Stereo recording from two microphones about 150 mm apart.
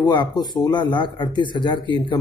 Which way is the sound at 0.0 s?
30° left (ahead or behind).